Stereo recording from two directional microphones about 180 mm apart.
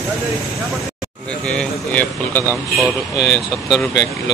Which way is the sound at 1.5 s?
5° left (ahead or behind).